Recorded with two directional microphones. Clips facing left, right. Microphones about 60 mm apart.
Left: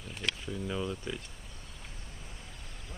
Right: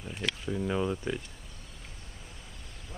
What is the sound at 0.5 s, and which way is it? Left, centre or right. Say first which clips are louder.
Speech: right 8 dB; right.